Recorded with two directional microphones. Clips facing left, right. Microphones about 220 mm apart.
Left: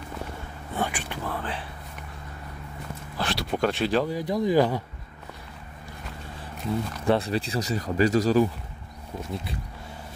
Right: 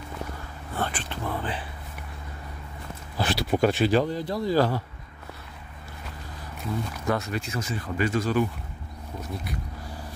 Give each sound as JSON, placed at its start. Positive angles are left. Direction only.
{"t": 0.7, "sound": "speech", "side_deg": 10}
{"t": 1.2, "sound": "speech", "side_deg": 0}
{"t": 3.2, "sound": "speech", "side_deg": -5}
{"t": 4.1, "sound": "speech", "side_deg": 15}
{"t": 7.1, "sound": "speech", "side_deg": 30}
{"t": 9.2, "sound": "speech", "side_deg": 25}